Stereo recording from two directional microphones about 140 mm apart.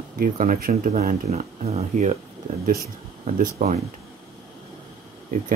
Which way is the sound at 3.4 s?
70° right (ahead or behind).